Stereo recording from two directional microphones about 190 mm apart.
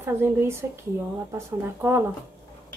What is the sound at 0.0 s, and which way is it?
A woman's voice, 10° right (ahead or behind).